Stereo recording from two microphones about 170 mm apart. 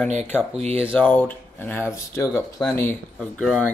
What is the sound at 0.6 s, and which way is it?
Speech, 35° right (ahead or behind).